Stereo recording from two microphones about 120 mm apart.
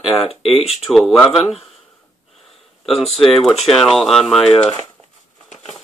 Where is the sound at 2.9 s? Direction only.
Centre (ahead or behind).